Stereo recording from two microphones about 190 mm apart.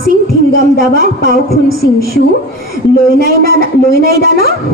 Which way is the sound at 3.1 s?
50° right (ahead or behind).